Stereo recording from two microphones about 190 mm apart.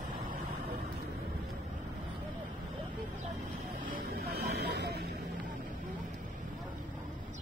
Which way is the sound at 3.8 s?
55° right (ahead or behind).